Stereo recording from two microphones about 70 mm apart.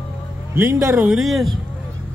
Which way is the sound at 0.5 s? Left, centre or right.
Right.